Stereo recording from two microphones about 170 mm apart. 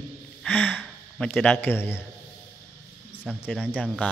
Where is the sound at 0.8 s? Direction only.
5° left (ahead or behind).